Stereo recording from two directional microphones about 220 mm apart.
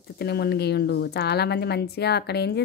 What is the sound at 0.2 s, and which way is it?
A woman's voice, 45° left (ahead or behind).